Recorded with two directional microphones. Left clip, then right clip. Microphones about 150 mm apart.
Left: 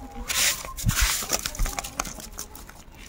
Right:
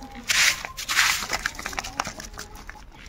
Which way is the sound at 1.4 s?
20° left (ahead or behind).